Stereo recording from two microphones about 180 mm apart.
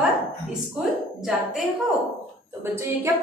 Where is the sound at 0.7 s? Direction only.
Centre (ahead or behind).